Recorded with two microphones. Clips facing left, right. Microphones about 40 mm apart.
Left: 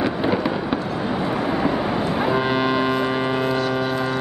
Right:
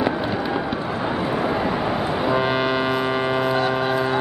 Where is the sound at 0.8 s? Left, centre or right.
Centre.